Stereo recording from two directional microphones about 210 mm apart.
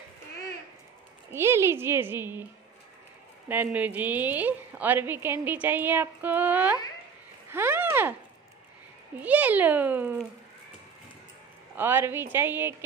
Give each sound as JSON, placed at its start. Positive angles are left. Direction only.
{"t": 1.3, "sound": "a woman's voice", "side_deg": -10}
{"t": 3.4, "sound": "a woman's voice", "side_deg": -10}
{"t": 7.5, "sound": "a sound", "side_deg": -10}
{"t": 9.2, "sound": "a woman's voice", "side_deg": -5}
{"t": 11.7, "sound": "a woman's voice", "side_deg": -10}